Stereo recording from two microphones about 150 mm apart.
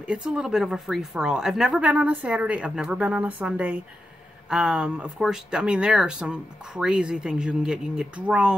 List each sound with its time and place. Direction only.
0.0 s a woman's voice: 5° right (ahead or behind)